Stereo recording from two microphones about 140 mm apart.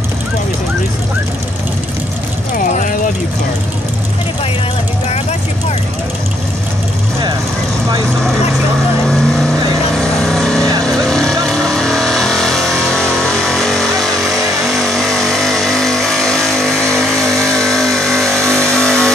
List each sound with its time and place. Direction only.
2.6 s vehicle: 70° left (ahead or behind)
9.0 s vehicle: 5° left (ahead or behind)